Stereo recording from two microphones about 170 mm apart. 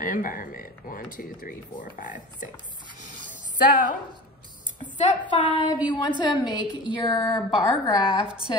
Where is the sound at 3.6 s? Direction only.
50° left (ahead or behind).